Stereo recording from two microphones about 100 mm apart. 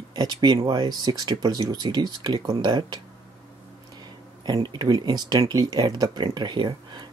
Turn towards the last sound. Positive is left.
turn(degrees=-50)  # may be behind; listen again after turning